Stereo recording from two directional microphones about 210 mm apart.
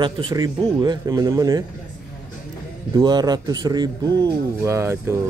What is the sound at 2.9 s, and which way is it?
A man's voice, 20° right (ahead or behind).